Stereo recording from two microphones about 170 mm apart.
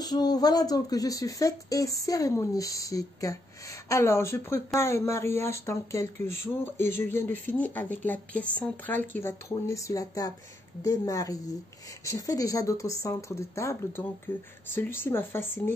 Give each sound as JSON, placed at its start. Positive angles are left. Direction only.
{"t": 0.0, "sound": "speech", "side_deg": 25}